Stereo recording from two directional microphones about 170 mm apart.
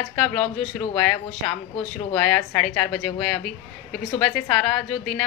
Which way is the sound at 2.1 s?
10° left (ahead or behind).